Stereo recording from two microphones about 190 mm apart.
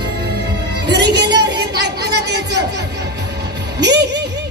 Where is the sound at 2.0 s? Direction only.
60° right (ahead or behind).